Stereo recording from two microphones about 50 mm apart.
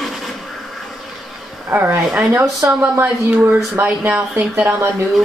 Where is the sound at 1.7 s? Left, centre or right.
Right.